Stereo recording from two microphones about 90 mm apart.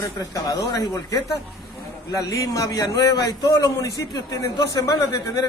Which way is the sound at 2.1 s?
40° left (ahead or behind).